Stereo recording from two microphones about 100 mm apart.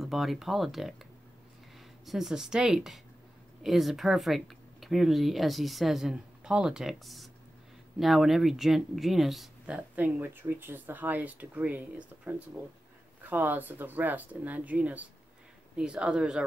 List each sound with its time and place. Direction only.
0.0 s speech: centre (ahead or behind)
2.0 s speech: 5° right (ahead or behind)
9.8 s speech: 15° right (ahead or behind)